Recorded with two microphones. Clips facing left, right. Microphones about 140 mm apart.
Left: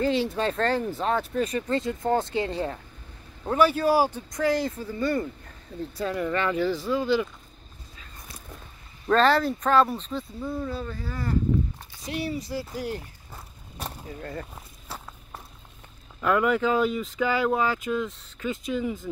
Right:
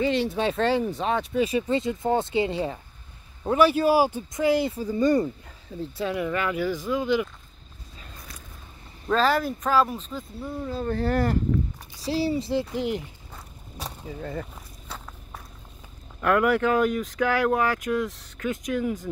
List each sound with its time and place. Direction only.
0.3 s speech: centre (ahead or behind); by 5.3 s 20° right (ahead or behind)
5.8 s speech: 5° right (ahead or behind)
9.1 s speech: 10° right (ahead or behind)
10.9 s speech: 75° right (ahead or behind)
12.0 s speech: 30° right (ahead or behind)
13.3 s a sound: centre (ahead or behind)
14.5 s walk: 5° left (ahead or behind)
16.2 s speech: centre (ahead or behind)